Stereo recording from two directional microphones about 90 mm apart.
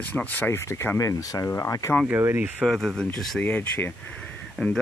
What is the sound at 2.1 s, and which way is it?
Speech, 25° right (ahead or behind).